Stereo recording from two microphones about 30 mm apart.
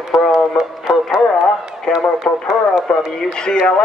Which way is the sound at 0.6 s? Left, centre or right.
Right.